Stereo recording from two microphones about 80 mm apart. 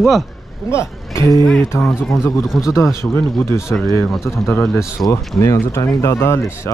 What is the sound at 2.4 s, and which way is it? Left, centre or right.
Speech, centre.